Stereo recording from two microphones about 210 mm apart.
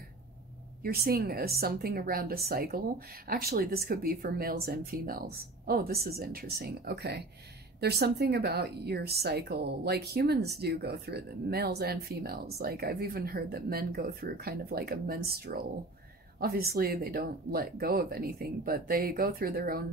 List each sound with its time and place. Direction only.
0.8 s a woman's voice: 45° right (ahead or behind)